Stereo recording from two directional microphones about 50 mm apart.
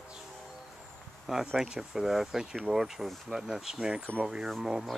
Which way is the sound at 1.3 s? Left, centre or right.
Centre.